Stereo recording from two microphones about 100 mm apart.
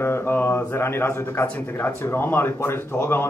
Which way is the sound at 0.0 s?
25° left (ahead or behind).